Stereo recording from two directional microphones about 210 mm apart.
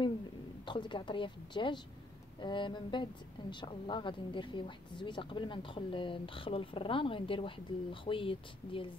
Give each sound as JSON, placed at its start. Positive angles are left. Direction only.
{"t": 0.7, "sound": "a woman's voice", "side_deg": 25}